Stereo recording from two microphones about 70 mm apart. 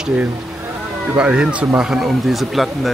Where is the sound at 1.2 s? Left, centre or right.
Centre.